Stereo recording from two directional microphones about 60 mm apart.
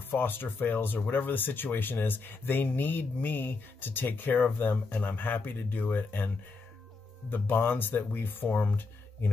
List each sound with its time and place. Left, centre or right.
0.1 s speech: left